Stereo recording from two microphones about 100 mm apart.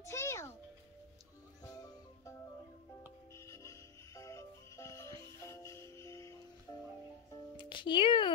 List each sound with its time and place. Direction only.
0.0 s music: 30° left (ahead or behind)
1.6 s music: 30° left (ahead or behind)
6.7 s music: 45° left (ahead or behind)